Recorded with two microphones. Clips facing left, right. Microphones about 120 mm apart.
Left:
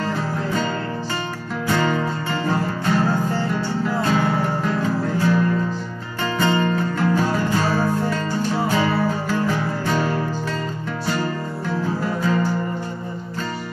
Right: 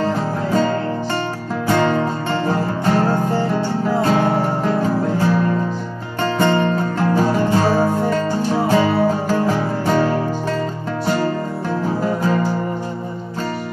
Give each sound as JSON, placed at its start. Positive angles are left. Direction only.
{"t": 1.7, "sound": "music", "side_deg": -35}
{"t": 6.6, "sound": "music", "side_deg": -30}